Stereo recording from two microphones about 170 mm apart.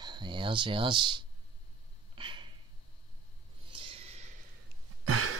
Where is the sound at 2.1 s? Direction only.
30° right (ahead or behind).